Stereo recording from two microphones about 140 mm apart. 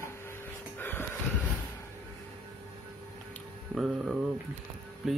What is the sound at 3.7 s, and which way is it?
Speech, 5° right (ahead or behind).